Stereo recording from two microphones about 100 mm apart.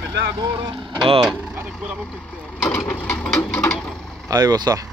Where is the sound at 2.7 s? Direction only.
5° left (ahead or behind).